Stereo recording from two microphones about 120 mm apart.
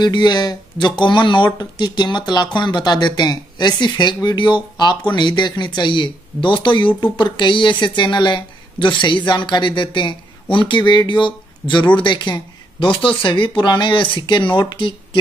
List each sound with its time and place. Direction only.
0.0 s speech: 35° left (ahead or behind)